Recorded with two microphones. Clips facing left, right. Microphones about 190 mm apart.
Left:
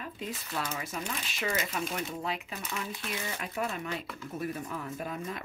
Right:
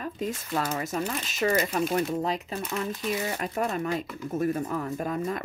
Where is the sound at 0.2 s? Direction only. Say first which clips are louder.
Right 7 dB; 45° right (ahead or behind).